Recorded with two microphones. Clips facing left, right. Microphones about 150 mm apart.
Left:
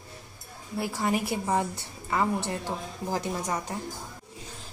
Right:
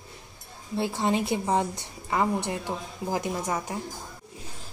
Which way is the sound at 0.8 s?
25° right (ahead or behind).